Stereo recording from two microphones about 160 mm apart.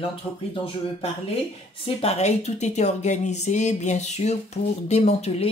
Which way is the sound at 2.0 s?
40° left (ahead or behind).